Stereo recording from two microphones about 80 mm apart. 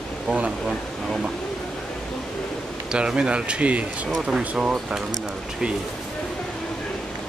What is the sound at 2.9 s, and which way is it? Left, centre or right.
Speech, centre.